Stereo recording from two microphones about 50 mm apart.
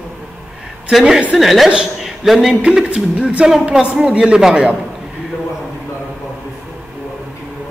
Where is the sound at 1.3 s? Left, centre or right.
Centre.